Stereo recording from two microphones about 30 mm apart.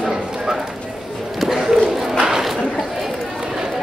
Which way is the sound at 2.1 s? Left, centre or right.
Right.